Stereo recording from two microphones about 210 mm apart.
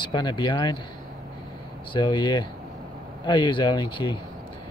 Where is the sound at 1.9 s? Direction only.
25° left (ahead or behind).